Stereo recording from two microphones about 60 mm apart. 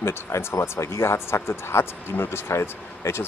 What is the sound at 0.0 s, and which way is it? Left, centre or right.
A man's voice, left.